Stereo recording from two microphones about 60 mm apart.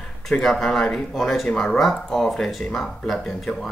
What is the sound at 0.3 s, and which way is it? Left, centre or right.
Speech, centre.